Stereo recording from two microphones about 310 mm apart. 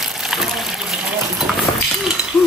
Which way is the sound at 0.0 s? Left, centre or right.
Centre.